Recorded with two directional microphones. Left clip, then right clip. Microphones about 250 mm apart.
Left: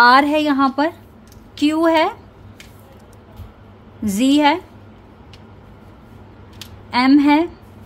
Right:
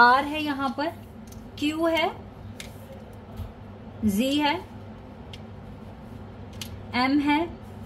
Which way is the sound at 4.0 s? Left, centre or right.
Left.